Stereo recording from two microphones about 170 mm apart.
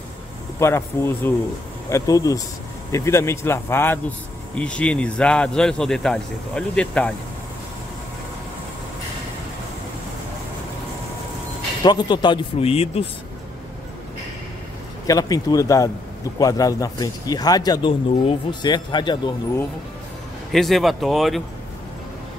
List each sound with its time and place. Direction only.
0.6 s a man's voice: 15° left (ahead or behind)
11.8 s speech: 25° left (ahead or behind)
15.0 s speech: 20° left (ahead or behind)
20.5 s a man's voice: centre (ahead or behind)